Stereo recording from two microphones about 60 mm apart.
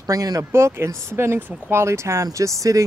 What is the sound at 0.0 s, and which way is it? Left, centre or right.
Speech, right.